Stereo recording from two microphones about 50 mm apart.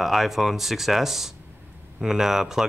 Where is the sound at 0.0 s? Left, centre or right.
Centre.